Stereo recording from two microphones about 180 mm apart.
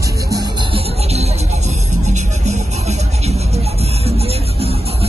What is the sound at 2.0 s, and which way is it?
Music, 40° right (ahead or behind).